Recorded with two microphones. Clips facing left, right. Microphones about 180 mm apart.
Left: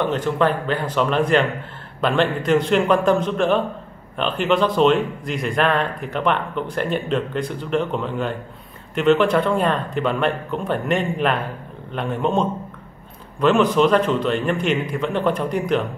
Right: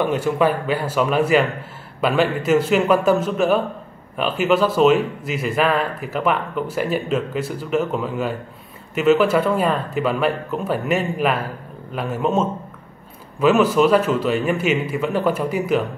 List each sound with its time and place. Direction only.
0.0 s a man's voice: 10° right (ahead or behind)